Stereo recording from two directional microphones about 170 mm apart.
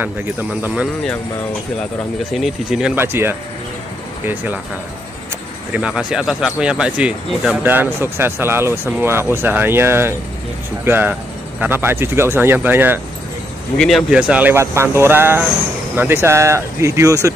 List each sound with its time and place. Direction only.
2.3 s speech: centre (ahead or behind)
3.0 s speech: 15° right (ahead or behind)
5.7 s speech: 5° right (ahead or behind)
13.7 s speech: centre (ahead or behind); by 17.3 s 20° right (ahead or behind)